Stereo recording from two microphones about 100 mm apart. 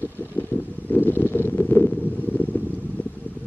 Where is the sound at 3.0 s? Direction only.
20° left (ahead or behind).